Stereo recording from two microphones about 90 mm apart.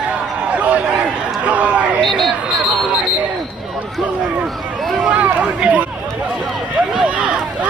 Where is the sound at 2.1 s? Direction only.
Centre (ahead or behind).